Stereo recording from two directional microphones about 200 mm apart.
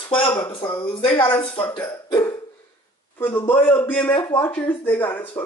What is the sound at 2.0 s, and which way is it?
Hiccup, 20° left (ahead or behind).